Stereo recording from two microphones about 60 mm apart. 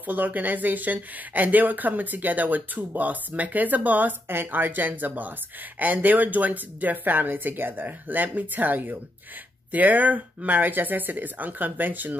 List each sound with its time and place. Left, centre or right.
0.0 s speech: right